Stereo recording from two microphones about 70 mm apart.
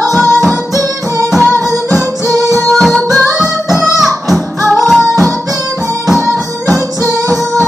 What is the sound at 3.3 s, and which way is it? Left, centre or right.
Music, centre.